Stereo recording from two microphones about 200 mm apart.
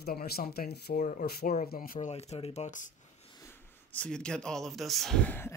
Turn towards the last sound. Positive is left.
turn(degrees=10)  # may be behind; listen again after turning